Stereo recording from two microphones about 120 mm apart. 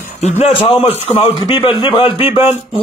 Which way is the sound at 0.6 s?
50° left (ahead or behind).